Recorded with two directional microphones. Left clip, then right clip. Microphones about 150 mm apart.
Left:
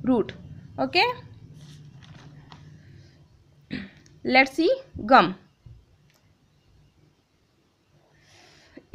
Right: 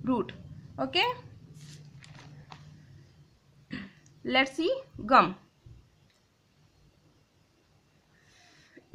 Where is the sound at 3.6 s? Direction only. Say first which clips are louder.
Left 5 dB; 30° left (ahead or behind).